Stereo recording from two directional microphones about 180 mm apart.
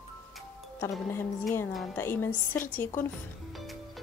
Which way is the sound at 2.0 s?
10° left (ahead or behind).